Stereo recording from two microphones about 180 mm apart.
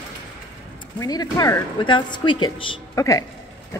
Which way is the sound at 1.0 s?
20° left (ahead or behind).